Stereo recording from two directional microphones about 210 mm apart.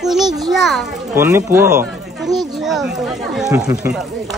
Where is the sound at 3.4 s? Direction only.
15° right (ahead or behind).